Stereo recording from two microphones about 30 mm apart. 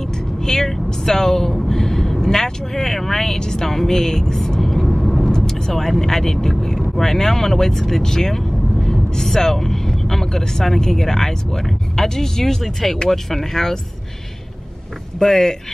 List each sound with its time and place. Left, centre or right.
0.0 s vehicle: centre
2.7 s speech: centre
4.6 s vehicle: centre
5.2 s vehicle: centre
5.7 s speech: centre
15.2 s speech: centre